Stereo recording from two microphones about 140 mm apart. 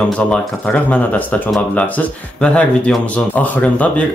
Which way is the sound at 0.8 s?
10° left (ahead or behind).